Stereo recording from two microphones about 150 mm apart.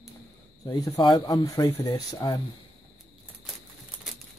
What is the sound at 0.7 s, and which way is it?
Speech, 25° left (ahead or behind).